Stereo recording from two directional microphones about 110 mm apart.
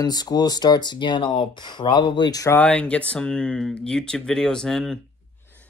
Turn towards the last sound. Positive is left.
turn(degrees=5)  # may be behind; listen again after turning